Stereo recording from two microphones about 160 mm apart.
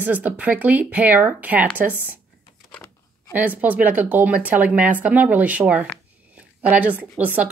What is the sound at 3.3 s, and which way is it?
Speech, 10° right (ahead or behind).